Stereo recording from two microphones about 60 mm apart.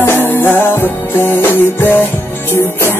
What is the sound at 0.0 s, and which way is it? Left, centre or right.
Music, left.